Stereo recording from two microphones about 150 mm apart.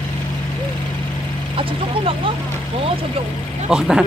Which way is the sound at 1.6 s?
35° right (ahead or behind).